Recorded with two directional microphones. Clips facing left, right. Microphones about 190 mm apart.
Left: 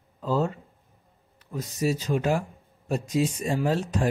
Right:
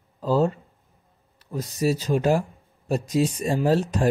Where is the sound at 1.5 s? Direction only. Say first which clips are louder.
Right 3 dB; 35° right (ahead or behind).